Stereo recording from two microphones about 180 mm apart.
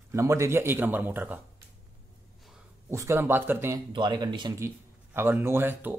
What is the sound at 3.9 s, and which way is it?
A man's voice, 25° right (ahead or behind).